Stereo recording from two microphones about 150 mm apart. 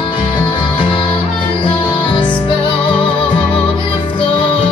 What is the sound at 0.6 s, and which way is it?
Music, 35° left (ahead or behind).